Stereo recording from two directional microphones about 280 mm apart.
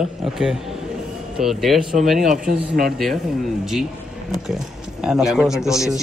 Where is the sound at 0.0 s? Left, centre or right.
Centre.